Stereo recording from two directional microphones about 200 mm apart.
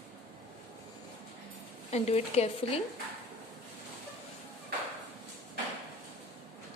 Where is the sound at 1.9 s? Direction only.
35° left (ahead or behind).